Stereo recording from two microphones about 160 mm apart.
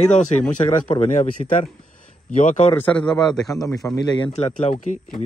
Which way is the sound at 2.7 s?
10° left (ahead or behind).